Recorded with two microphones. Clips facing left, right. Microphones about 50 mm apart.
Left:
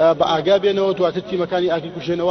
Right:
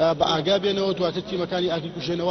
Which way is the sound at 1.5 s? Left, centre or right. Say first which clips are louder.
Left 6 dB; centre.